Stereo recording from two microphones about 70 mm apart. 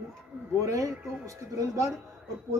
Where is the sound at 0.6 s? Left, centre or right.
Right.